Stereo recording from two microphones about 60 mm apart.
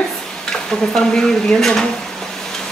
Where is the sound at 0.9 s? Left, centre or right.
Centre.